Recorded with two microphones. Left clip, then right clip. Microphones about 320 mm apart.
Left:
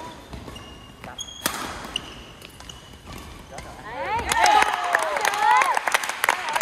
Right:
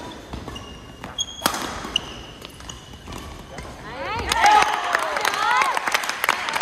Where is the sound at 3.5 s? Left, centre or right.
Left.